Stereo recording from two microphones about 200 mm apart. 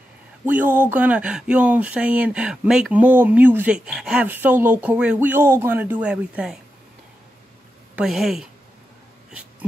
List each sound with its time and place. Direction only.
0.5 s speech: 10° right (ahead or behind)
7.9 s speech: centre (ahead or behind)
9.3 s a sound: 5° right (ahead or behind)